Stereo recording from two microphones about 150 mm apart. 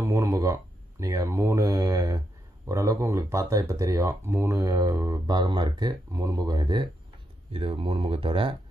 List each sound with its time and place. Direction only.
0.0 s speech: 20° right (ahead or behind); by 8.5 s 35° right (ahead or behind)